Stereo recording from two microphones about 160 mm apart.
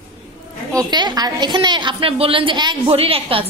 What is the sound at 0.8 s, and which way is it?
A woman's voice, 25° right (ahead or behind).